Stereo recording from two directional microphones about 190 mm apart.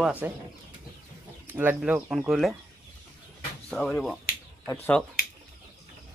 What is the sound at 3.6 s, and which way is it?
Speech, 5° left (ahead or behind).